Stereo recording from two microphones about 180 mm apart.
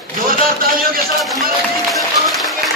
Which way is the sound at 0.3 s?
55° right (ahead or behind).